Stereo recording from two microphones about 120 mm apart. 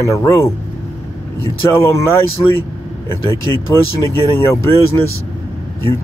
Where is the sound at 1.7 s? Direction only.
25° left (ahead or behind).